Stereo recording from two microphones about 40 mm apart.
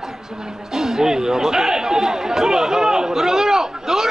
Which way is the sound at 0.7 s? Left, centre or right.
Centre.